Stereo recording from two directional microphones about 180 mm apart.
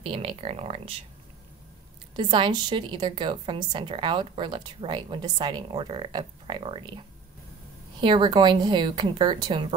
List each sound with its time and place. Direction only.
0.0 s speech: 30° right (ahead or behind)
2.1 s a woman's voice: 25° right (ahead or behind)
8.0 s a woman's voice: 25° right (ahead or behind)